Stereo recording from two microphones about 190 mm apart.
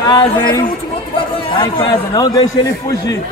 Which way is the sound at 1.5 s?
25° left (ahead or behind).